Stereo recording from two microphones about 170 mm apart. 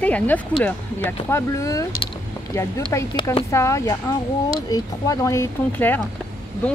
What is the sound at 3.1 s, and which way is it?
Speech, 25° left (ahead or behind).